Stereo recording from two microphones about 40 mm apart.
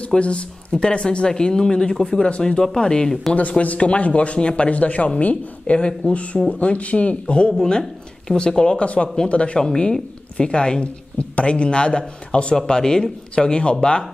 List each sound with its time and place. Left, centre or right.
0.2 s speech: left
3.3 s speech: left
7.5 s speech: centre
12.5 s speech: centre